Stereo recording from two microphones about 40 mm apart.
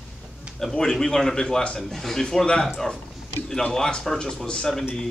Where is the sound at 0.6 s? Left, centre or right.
Centre.